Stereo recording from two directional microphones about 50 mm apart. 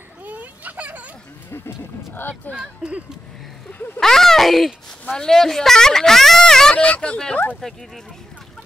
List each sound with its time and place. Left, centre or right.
0.2 s children playing: right
1.5 s speech: left
2.6 s speech: right
4.0 s speech: centre
6.8 s speech: left
7.6 s speech: centre